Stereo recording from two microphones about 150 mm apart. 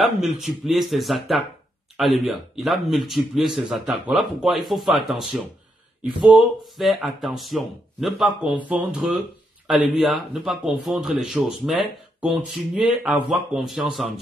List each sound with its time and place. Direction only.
0.0 s speech: centre (ahead or behind)